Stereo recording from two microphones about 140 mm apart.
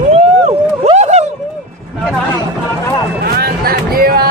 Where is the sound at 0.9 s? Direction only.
50° right (ahead or behind).